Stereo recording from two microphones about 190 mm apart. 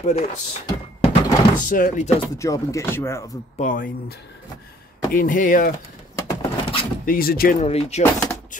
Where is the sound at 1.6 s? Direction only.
45° left (ahead or behind).